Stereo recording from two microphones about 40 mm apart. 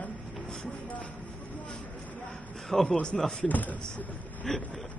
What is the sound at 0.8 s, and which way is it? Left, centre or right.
Vehicle, left.